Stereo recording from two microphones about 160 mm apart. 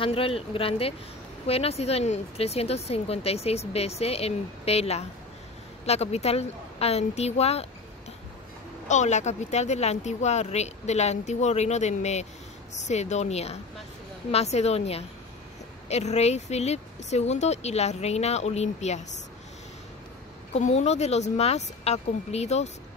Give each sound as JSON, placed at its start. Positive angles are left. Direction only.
{"t": 0.0, "sound": "speech", "side_deg": 35}
{"t": 8.8, "sound": "speech", "side_deg": 45}
{"t": 20.5, "sound": "speech", "side_deg": 45}